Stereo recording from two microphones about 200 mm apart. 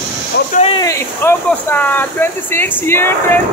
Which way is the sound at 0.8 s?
15° left (ahead or behind).